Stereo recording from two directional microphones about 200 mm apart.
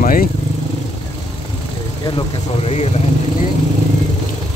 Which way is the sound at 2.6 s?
30° left (ahead or behind).